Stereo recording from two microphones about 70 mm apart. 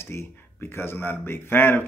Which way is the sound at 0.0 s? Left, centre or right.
Left.